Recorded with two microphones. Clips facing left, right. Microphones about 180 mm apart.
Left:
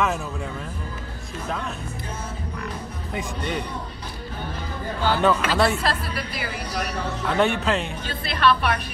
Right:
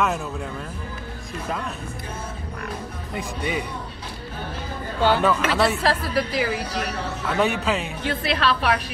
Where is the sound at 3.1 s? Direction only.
5° right (ahead or behind).